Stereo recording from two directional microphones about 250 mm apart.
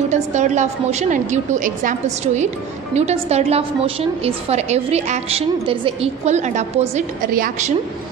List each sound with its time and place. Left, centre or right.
0.1 s a woman's voice: right